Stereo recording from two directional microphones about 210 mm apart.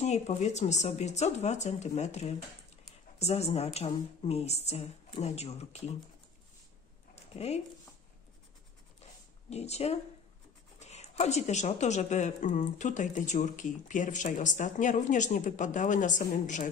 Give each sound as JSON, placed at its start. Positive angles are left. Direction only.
{"t": 0.0, "sound": "a woman's voice", "side_deg": 35}
{"t": 7.3, "sound": "a woman's voice", "side_deg": 30}
{"t": 9.5, "sound": "a woman's voice", "side_deg": 30}